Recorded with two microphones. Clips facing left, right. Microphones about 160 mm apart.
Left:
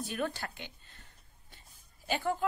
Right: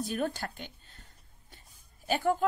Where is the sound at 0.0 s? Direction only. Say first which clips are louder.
Right 3 dB; 40° right (ahead or behind).